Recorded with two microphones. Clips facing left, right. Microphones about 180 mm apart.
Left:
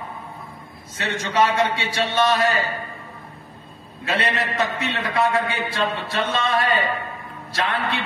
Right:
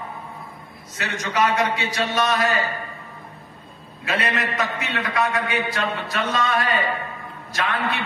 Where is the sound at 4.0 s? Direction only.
30° left (ahead or behind).